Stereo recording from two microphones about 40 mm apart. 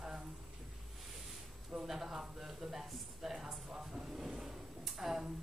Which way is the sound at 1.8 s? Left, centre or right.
Centre.